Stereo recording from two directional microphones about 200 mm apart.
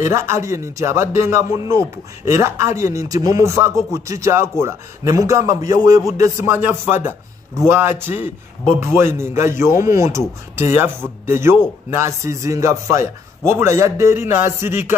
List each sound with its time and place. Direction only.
0.0 s speech: 15° right (ahead or behind)
11.2 s speech: 10° right (ahead or behind)